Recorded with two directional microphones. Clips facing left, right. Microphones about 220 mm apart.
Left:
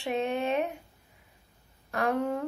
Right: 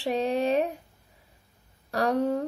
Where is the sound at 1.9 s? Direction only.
35° right (ahead or behind).